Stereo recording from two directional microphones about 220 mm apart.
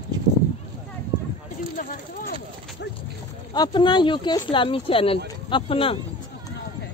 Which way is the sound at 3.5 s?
20° left (ahead or behind).